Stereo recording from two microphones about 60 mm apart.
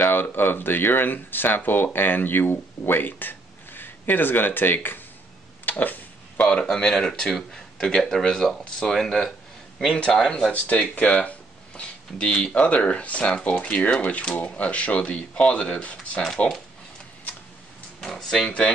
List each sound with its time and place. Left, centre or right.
0.0 s speech: left
5.7 s a sound: left
6.4 s speech: centre
18.0 s speech: centre